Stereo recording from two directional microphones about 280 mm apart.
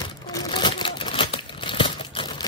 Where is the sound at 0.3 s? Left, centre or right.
Centre.